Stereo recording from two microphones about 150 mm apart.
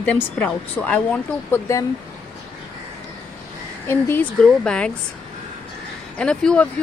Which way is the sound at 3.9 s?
15° left (ahead or behind).